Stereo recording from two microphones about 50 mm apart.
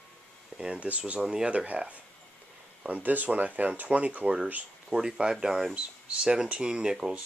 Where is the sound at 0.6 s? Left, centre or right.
Centre.